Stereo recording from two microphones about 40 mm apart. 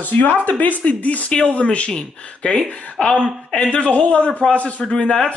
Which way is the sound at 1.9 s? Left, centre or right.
Centre.